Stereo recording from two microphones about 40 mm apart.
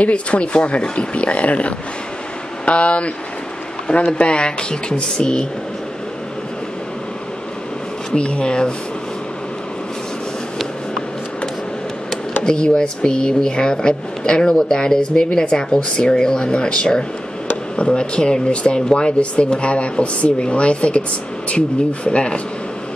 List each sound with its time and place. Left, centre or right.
0.0 s speech: left
8.1 s speech: left
12.4 s speech: left